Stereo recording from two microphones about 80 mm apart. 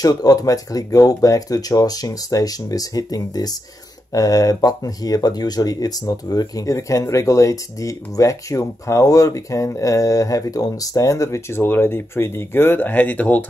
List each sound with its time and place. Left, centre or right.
0.0 s speech: left; by 13.5 s centre